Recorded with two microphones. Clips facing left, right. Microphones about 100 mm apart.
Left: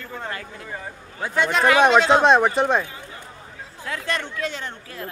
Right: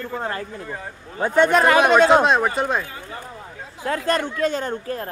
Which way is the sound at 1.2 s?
50° right (ahead or behind).